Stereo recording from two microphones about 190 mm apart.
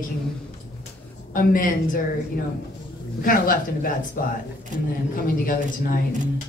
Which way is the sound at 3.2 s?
45° left (ahead or behind).